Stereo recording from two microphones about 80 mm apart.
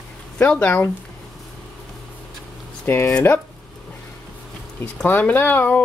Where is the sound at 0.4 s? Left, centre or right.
Centre.